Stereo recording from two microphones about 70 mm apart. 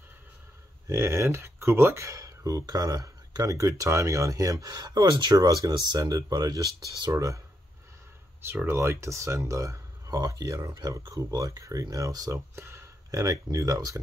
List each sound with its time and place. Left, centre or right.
0.8 s speech: right
2.6 s speech: right
7.2 s speech: right
8.6 s speech: right
12.3 s speech: right
13.1 s speech: right